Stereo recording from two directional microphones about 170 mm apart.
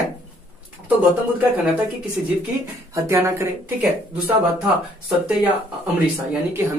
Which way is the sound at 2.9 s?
15° right (ahead or behind).